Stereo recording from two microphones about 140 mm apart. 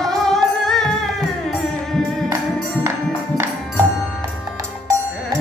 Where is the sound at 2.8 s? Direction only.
20° right (ahead or behind).